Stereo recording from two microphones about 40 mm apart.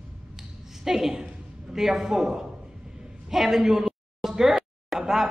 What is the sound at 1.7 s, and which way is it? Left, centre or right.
Speech, centre.